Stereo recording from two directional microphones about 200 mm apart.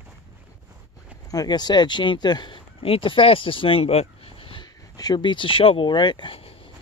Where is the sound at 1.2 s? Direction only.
20° left (ahead or behind).